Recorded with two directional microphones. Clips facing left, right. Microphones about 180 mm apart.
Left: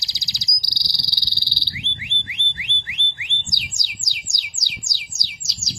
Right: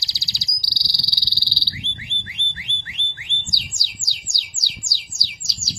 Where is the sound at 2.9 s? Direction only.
20° left (ahead or behind).